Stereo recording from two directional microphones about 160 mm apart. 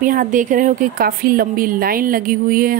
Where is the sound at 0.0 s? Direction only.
55° right (ahead or behind).